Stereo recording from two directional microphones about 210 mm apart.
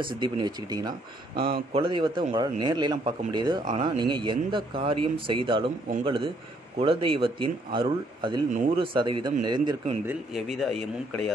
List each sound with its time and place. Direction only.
0.0 s speech: 20° right (ahead or behind)
10.3 s speech: centre (ahead or behind)